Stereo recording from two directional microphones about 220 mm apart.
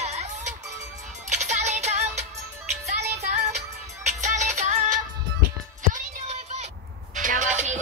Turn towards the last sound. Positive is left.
turn(degrees=-35)  # may be behind; listen again after turning